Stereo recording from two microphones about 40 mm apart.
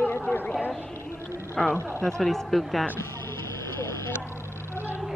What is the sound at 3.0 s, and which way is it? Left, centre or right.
Vehicle, left.